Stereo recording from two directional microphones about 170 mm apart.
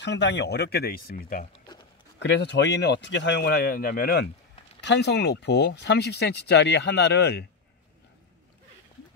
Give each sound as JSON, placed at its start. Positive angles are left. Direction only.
{"t": 0.0, "sound": "speech", "side_deg": 90}
{"t": 2.1, "sound": "speech", "side_deg": 90}
{"t": 4.8, "sound": "speech", "side_deg": 80}